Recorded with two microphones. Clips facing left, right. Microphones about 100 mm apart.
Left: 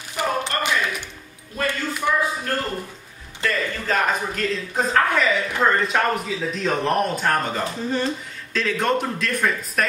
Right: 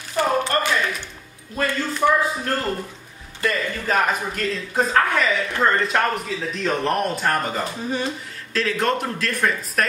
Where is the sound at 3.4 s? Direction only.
10° right (ahead or behind).